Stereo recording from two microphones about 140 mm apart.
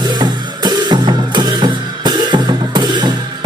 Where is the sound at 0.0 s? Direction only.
30° right (ahead or behind).